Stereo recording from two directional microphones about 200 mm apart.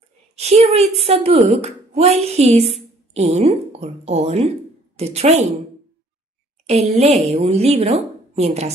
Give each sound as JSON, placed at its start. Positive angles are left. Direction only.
{"t": 0.4, "sound": "a woman's voice", "side_deg": -30}
{"t": 6.6, "sound": "a woman's voice", "side_deg": -30}